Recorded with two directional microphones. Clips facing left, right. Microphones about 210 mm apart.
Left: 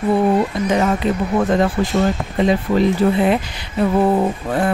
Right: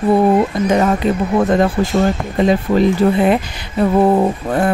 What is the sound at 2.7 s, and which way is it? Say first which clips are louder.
Speech: right 2 dB; 50° right (ahead or behind).